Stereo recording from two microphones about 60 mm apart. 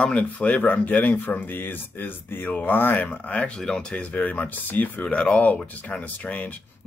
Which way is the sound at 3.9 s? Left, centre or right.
Left.